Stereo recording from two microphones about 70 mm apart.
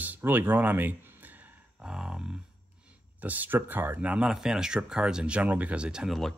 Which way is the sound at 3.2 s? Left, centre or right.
Right.